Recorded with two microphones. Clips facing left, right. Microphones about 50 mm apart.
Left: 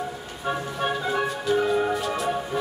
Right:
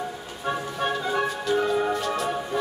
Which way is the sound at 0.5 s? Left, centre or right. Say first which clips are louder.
Even; centre.